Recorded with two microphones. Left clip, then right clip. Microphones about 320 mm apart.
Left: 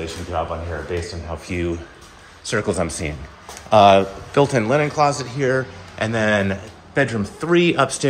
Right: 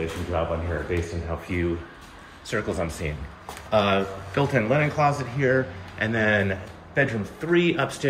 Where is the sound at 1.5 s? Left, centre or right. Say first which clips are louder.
Left 3 dB; centre.